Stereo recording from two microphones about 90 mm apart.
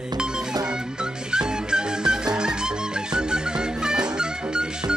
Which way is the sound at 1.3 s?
10° right (ahead or behind).